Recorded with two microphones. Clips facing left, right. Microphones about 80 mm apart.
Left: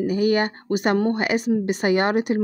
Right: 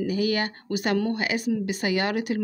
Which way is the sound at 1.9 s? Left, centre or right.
Left.